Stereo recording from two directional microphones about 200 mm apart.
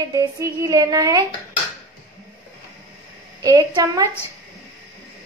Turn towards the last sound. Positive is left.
turn(degrees=-20)  # may be behind; listen again after turning